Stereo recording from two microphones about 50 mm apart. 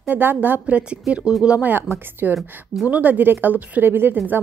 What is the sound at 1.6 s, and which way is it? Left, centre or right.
Speech, right.